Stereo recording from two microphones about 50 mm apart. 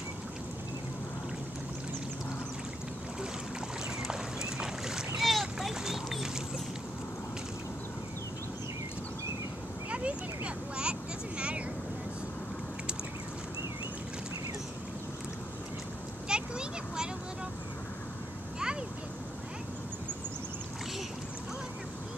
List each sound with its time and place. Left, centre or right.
4.1 s boat: centre
5.2 s a sound: centre
9.8 s vehicle: right
16.3 s vehicle: centre